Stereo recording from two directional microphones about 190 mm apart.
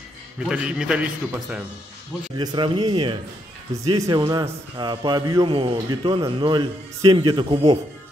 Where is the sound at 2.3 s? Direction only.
25° right (ahead or behind).